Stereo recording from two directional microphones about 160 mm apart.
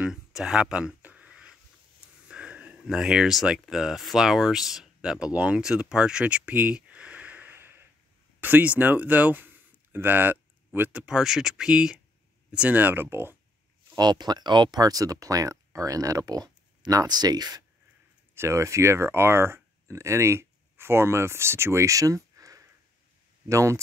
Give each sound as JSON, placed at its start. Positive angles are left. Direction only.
{"t": 0.0, "sound": "a sound", "side_deg": -5}
{"t": 2.2, "sound": "speech", "side_deg": -5}
{"t": 13.9, "sound": "speech", "side_deg": -25}